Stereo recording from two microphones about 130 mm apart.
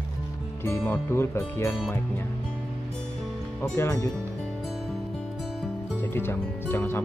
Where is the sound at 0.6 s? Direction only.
15° left (ahead or behind).